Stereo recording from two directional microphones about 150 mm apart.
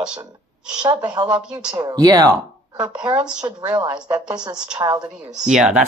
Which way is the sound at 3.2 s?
5° right (ahead or behind).